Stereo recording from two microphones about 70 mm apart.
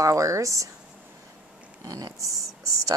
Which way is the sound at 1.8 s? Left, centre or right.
Right.